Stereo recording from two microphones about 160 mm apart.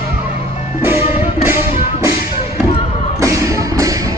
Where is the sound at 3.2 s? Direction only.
20° right (ahead or behind).